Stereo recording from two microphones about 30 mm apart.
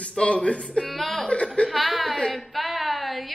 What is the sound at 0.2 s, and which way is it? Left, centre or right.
Speech, left.